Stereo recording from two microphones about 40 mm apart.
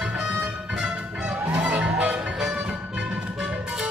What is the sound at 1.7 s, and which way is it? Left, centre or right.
Music, right.